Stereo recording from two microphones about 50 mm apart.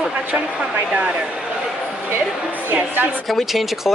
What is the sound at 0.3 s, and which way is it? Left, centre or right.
Speech, right.